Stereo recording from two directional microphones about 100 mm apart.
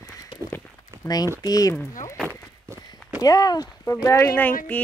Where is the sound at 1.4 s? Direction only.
40° left (ahead or behind).